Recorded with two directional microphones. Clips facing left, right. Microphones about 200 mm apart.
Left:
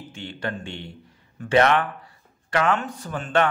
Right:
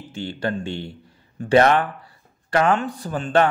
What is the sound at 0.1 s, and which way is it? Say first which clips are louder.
A man's voice: right 6 dB; 35° right (ahead or behind).